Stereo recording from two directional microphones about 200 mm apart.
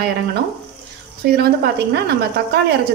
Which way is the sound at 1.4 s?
55° right (ahead or behind).